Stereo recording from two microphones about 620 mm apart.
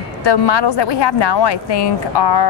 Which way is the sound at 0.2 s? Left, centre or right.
Left.